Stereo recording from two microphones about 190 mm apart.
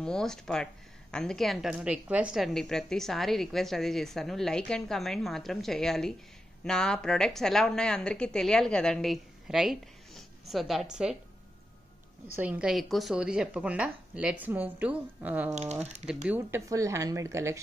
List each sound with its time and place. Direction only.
0.0 s a woman's voice: 5° left (ahead or behind)
12.4 s a woman's voice: 5° right (ahead or behind)
15.5 s speech: 35° right (ahead or behind)
16.3 s speech: 15° right (ahead or behind)